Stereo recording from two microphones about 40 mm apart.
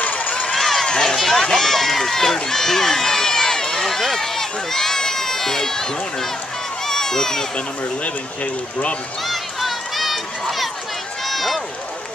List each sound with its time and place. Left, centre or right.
0.0 s run: left
0.5 s run: centre
1.0 s speech: centre
6.9 s a sound: centre
9.2 s run: centre
11.2 s run: centre